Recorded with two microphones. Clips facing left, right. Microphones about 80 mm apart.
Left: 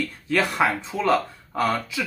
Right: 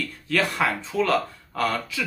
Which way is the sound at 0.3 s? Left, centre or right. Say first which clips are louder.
Left 2 dB; centre.